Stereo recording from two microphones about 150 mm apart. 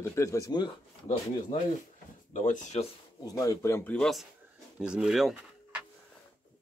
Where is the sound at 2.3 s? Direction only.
55° left (ahead or behind).